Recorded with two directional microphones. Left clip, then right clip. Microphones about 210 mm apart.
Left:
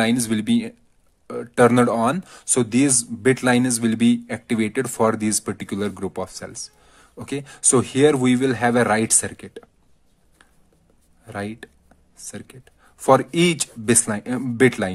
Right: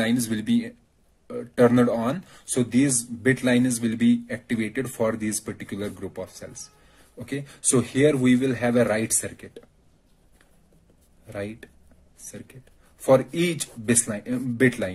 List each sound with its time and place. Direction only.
0.0 s speech: 35° left (ahead or behind)
11.3 s speech: 40° left (ahead or behind)